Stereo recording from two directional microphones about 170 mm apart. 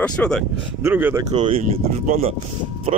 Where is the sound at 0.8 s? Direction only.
15° right (ahead or behind).